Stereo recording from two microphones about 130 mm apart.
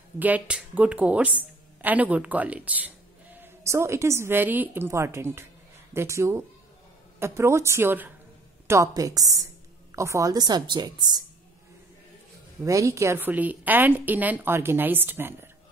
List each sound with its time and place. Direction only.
0.2 s a woman's voice: 10° right (ahead or behind); by 11.2 s 30° right (ahead or behind)
12.6 s a woman's voice: 25° right (ahead or behind)